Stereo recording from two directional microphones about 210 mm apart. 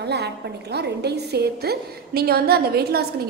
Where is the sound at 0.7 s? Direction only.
50° right (ahead or behind).